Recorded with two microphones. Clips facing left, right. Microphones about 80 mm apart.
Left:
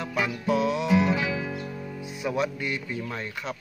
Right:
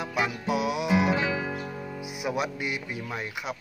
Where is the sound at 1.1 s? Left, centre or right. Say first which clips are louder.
Right 1 dB; right.